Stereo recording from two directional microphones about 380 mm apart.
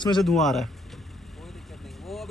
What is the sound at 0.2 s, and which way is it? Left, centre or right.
Speech, centre.